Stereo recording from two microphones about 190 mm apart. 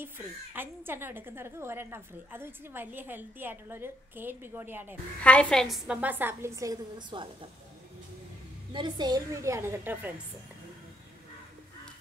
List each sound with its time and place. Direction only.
0.6 s a woman's voice: 10° right (ahead or behind)
5.2 s a woman's voice: 5° left (ahead or behind); by 7.2 s 25° right (ahead or behind)
8.7 s a woman's voice: 20° right (ahead or behind)